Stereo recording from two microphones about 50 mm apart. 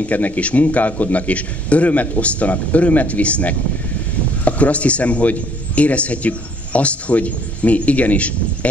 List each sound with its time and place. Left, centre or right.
0.0 s a man's voice: left